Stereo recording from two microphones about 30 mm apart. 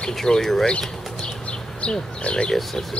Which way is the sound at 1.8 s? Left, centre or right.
Left.